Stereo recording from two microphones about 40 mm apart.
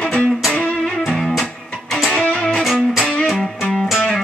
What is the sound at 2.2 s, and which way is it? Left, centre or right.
Music, left.